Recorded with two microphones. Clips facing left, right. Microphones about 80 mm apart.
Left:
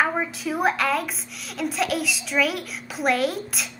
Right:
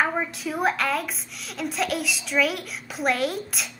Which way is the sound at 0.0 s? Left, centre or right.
Centre.